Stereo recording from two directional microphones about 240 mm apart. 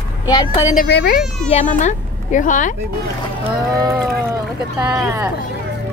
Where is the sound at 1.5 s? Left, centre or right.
Left.